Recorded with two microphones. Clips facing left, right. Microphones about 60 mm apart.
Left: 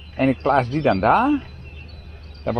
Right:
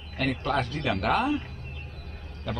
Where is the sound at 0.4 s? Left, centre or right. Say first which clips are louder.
Left 10 dB; left.